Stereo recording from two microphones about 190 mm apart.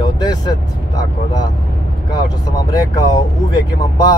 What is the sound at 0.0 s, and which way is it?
Speech, 20° left (ahead or behind).